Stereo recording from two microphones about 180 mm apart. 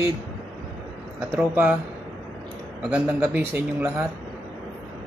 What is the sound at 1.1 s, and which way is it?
Speech, 5° right (ahead or behind).